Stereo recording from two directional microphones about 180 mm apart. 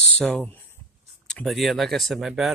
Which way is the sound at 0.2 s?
5° left (ahead or behind).